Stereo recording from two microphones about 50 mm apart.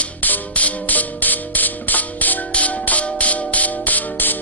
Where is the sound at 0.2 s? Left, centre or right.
Left.